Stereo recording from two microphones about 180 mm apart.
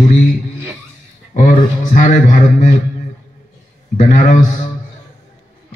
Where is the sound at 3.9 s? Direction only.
45° left (ahead or behind).